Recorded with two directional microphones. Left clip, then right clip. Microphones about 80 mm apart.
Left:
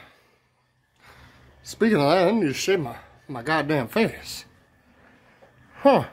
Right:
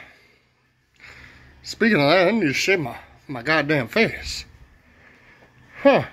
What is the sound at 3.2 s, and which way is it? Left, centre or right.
Speech, centre.